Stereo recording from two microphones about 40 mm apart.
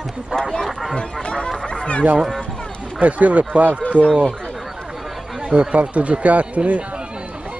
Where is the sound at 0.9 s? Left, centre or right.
Left.